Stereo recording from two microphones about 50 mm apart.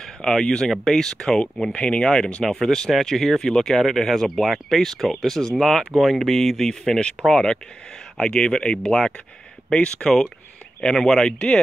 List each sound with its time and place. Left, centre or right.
0.0 s speech: centre